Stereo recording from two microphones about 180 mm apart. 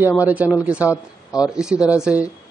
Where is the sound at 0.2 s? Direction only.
10° right (ahead or behind).